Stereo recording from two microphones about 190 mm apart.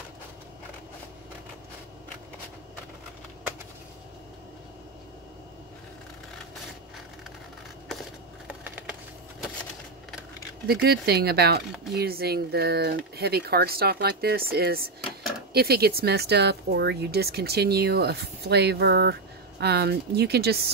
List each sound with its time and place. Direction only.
8.5 s wood: 10° right (ahead or behind)
10.7 s speech: 55° right (ahead or behind)